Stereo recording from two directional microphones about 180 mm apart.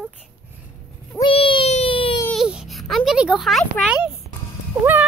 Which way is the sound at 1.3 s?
30° left (ahead or behind).